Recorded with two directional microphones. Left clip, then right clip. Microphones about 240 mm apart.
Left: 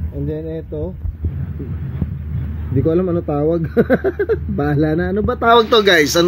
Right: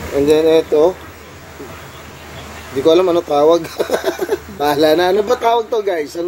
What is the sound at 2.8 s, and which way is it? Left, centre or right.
Speech, right.